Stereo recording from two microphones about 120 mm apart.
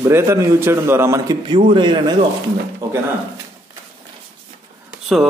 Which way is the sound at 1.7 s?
40° right (ahead or behind).